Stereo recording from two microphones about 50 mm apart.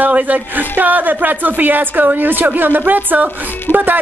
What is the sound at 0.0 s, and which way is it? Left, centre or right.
Speech, right.